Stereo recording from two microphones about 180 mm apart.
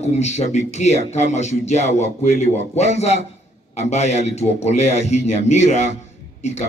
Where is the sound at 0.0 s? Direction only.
40° left (ahead or behind).